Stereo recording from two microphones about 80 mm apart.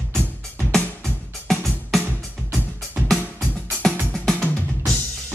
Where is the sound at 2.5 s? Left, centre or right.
Right.